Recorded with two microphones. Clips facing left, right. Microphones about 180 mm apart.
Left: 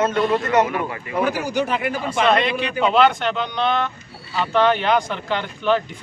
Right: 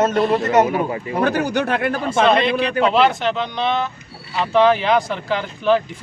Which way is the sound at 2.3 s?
Centre (ahead or behind).